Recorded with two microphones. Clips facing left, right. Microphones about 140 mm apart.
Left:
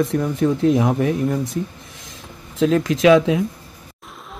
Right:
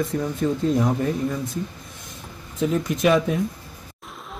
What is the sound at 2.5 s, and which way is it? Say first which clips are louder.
Speech: left 6 dB; 90° left.